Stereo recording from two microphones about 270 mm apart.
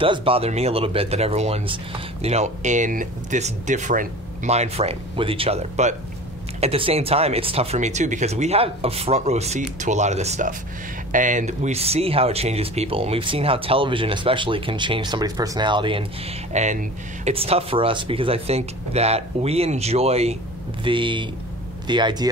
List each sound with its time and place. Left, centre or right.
0.0 s speech: centre